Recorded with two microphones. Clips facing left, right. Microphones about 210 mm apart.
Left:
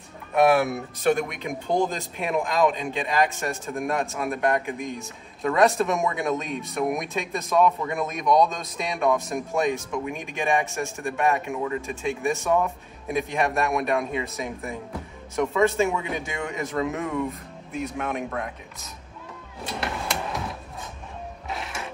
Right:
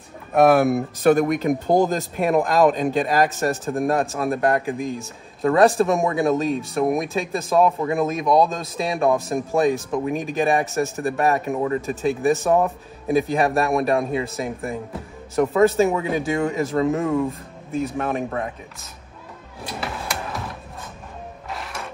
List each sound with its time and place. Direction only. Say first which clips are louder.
0.3 s speech: right 4 dB; 45° right (ahead or behind)
10.6 s speech: right 6 dB; 5° right (ahead or behind)
11.0 s speech: right 1 dB; 35° right (ahead or behind)
19.6 s a sound: even; centre (ahead or behind)
21.5 s music: right 1 dB; centre (ahead or behind)